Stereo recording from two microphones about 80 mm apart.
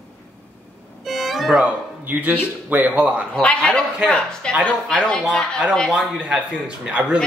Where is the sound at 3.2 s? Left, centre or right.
Centre.